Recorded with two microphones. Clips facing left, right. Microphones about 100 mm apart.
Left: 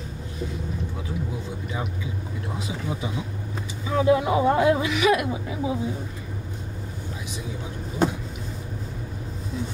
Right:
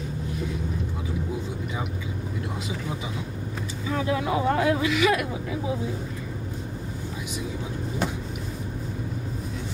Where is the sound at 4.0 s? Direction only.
25° left (ahead or behind).